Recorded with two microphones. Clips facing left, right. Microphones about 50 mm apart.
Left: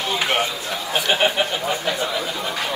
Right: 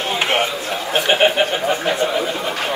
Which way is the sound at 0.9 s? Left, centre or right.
Right.